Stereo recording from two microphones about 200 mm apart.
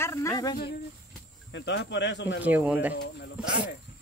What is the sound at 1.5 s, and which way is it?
Speech, 65° left (ahead or behind).